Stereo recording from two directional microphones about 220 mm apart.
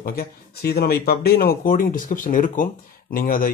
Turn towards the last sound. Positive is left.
turn(degrees=40)  # may be behind; listen again after turning